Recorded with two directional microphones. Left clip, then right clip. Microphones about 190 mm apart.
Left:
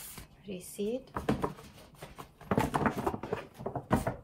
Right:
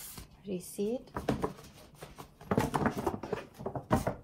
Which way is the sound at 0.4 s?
20° right (ahead or behind).